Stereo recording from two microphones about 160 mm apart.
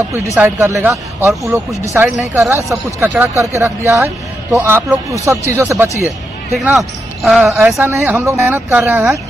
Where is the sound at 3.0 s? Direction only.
15° right (ahead or behind).